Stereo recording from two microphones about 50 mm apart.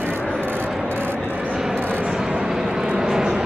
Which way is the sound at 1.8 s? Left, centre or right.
Right.